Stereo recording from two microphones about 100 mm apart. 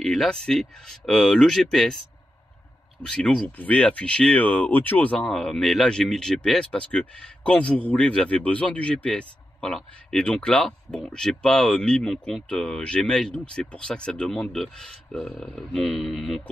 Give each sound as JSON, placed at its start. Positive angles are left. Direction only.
{"t": 0.0, "sound": "speech", "side_deg": 5}
{"t": 3.0, "sound": "speech", "side_deg": 10}